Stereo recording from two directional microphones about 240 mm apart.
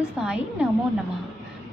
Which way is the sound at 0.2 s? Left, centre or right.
Centre.